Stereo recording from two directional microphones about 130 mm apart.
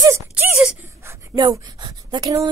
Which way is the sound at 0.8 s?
20° right (ahead or behind).